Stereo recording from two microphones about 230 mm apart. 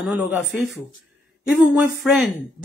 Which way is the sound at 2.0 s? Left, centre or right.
Centre.